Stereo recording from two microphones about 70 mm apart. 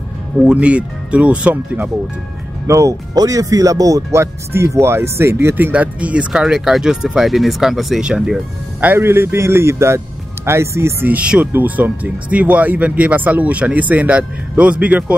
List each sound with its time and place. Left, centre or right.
0.4 s speech: centre
2.6 s speech: right
3.2 s speech: right
4.1 s speech: right
5.7 s speech: centre
8.8 s speech: right
11.1 s speech: centre